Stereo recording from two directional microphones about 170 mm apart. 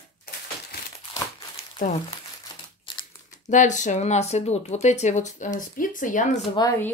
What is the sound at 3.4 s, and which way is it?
Speech, 45° left (ahead or behind).